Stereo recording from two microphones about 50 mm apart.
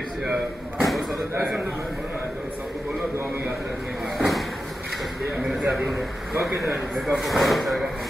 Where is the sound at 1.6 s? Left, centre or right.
Right.